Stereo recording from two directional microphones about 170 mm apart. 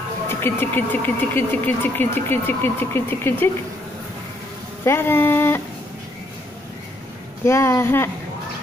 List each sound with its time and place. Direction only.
0.3 s speech: 15° left (ahead or behind)
4.8 s speech: 15° left (ahead or behind)
7.4 s speech: 15° left (ahead or behind)